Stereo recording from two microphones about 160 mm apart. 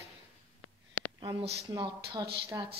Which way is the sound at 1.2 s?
35° right (ahead or behind).